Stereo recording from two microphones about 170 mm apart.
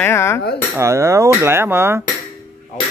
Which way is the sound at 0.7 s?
15° right (ahead or behind).